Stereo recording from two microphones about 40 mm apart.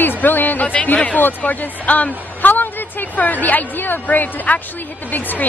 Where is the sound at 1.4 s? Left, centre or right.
Left.